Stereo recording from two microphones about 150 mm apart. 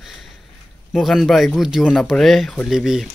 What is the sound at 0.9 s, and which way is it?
Speech, centre (ahead or behind).